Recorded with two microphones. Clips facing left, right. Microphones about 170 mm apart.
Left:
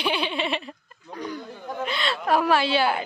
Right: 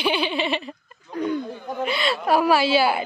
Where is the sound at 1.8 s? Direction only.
10° right (ahead or behind).